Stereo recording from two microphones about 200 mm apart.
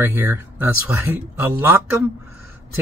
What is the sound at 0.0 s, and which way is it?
Speech, 10° right (ahead or behind).